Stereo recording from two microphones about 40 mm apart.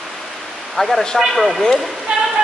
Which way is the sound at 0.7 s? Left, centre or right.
Centre.